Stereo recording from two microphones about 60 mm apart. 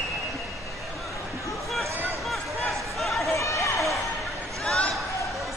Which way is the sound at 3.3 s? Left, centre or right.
Left.